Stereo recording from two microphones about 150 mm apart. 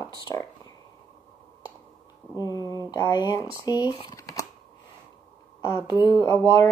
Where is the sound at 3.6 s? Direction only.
25° left (ahead or behind).